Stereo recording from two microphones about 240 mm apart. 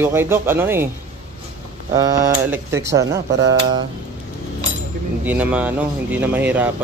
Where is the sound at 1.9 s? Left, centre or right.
Centre.